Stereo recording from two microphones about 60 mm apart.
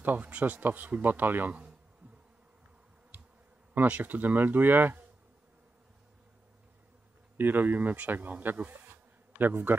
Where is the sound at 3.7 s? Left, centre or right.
Right.